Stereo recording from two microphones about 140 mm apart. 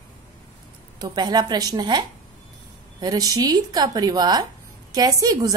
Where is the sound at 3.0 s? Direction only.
30° right (ahead or behind).